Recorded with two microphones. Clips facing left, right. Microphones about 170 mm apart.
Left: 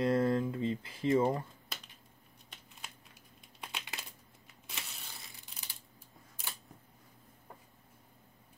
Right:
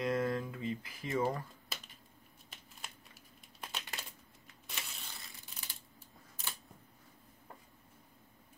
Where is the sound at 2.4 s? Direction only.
5° right (ahead or behind).